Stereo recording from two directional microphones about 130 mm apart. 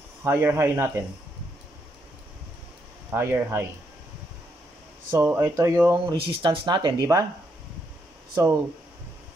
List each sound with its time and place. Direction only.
0.2 s speech: 20° right (ahead or behind)
3.1 s speech: 20° right (ahead or behind)
5.1 s speech: 15° right (ahead or behind)
6.1 s speech: 40° right (ahead or behind)